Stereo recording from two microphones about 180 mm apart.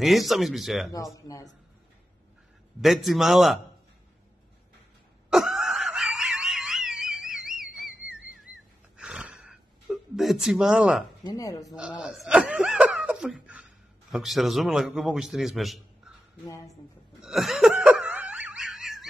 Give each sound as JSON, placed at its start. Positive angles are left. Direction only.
{"t": 0.0, "sound": "a man's voice", "side_deg": 0}
{"t": 1.1, "sound": "speech", "side_deg": 20}
{"t": 2.8, "sound": "a man's voice", "side_deg": 0}
{"t": 5.3, "sound": "wail", "side_deg": -5}
{"t": 8.9, "sound": "gasp", "side_deg": -5}
{"t": 11.2, "sound": "speech", "side_deg": 20}
{"t": 12.0, "sound": "laughter", "side_deg": 0}
{"t": 14.1, "sound": "a man's voice", "side_deg": 0}
{"t": 17.2, "sound": "laughter", "side_deg": 0}